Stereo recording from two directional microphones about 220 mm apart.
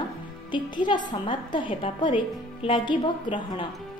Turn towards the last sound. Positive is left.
turn(degrees=20)  # may be behind; listen again after turning